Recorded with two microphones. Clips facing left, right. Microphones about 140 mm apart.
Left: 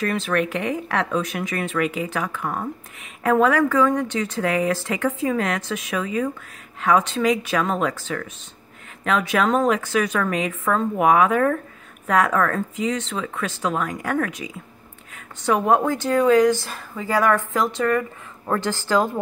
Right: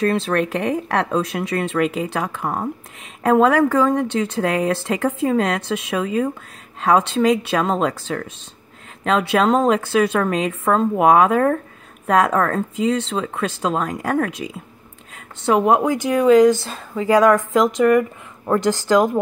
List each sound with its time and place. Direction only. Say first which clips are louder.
0.0 s a woman's voice: right 4 dB; 30° right (ahead or behind)
15.4 s a woman's voice: right 3 dB; 20° right (ahead or behind)